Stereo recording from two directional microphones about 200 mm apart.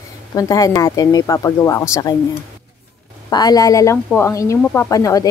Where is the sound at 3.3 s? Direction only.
20° left (ahead or behind).